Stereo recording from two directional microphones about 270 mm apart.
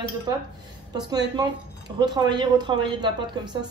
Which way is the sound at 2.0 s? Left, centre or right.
Centre.